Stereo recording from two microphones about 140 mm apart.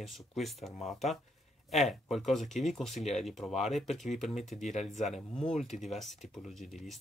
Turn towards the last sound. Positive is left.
turn(degrees=0)  # may be behind; listen again after turning